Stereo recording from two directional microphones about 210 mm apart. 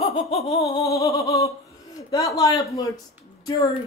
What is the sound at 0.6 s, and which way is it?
Speech, 15° left (ahead or behind).